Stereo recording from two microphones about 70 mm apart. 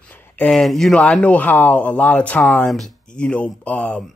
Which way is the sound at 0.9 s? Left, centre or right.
Centre.